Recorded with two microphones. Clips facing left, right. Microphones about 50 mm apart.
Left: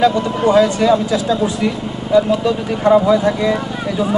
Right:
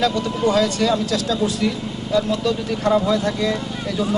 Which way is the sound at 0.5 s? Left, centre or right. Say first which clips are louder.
Left 7 dB; centre.